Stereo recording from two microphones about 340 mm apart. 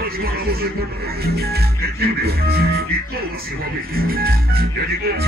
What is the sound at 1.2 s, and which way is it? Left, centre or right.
Music, right.